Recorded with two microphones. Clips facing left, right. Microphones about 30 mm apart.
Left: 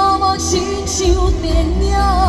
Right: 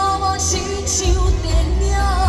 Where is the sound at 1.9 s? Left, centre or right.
Left.